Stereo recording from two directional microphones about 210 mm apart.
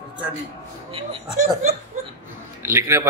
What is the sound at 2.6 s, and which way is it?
Speech, 10° right (ahead or behind).